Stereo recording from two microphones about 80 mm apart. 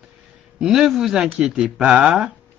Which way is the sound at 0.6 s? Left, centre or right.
Centre.